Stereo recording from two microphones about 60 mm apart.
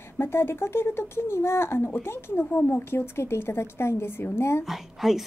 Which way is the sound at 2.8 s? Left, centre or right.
Left.